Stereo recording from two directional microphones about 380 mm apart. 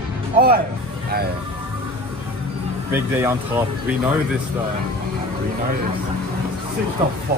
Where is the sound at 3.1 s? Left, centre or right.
Centre.